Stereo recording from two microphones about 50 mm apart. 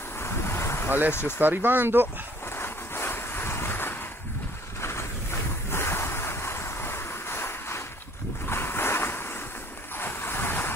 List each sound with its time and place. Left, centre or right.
0.2 s vehicle: left
1.4 s speech: right
2.5 s vehicle: left
5.7 s waves: left
8.5 s a sound: left
9.9 s vehicle: left